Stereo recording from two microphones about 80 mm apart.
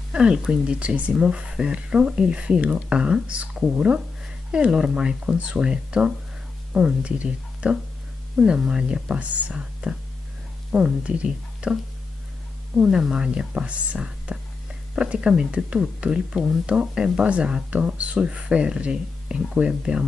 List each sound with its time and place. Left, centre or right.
0.1 s speech: centre